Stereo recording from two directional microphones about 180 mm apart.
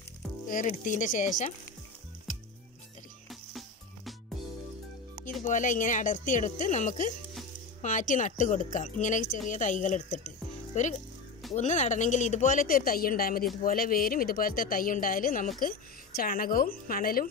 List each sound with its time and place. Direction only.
0.5 s speech: 45° left (ahead or behind)
3.3 s music: centre (ahead or behind)
5.4 s a child's voice: 45° left (ahead or behind)